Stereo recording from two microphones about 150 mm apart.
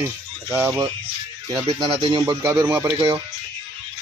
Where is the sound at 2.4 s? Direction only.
10° right (ahead or behind).